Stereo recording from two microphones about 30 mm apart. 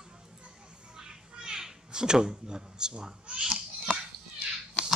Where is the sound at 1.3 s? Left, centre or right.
Right.